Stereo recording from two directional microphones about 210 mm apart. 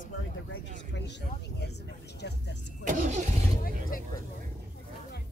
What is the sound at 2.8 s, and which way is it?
Speech, 40° right (ahead or behind).